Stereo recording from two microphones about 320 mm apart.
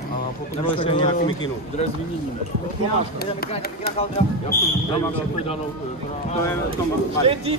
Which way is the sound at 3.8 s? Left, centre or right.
Left.